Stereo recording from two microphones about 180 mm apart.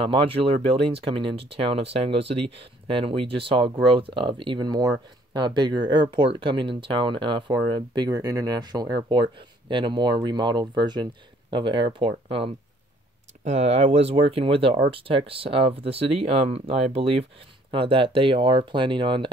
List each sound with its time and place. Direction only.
0.0 s speech: 30° right (ahead or behind)